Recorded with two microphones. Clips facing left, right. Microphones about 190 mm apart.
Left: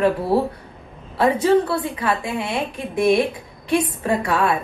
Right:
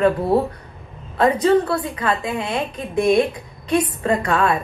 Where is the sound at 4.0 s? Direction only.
5° left (ahead or behind).